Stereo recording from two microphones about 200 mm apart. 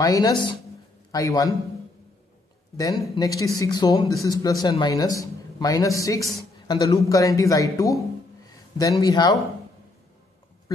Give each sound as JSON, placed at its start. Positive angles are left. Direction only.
{"t": 0.0, "sound": "speech", "side_deg": 15}
{"t": 2.8, "sound": "speech", "side_deg": 20}
{"t": 9.0, "sound": "speech", "side_deg": 20}